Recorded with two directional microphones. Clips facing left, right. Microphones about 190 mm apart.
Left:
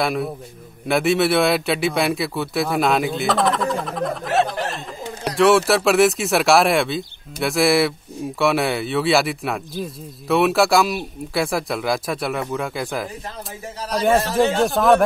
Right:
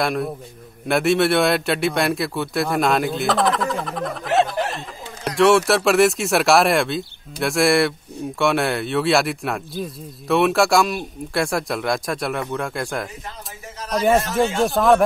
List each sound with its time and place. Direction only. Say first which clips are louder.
0.0 s speech: even; centre (ahead or behind)
4.5 s a sound: right 1 dB; centre (ahead or behind)
5.7 s speech: even; centre (ahead or behind)
14.1 s speech: left 1 dB; 30° left (ahead or behind)
14.6 s speech: right 1 dB; centre (ahead or behind)